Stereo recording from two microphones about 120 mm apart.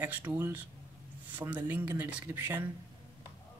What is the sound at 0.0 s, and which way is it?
Speech, 15° right (ahead or behind).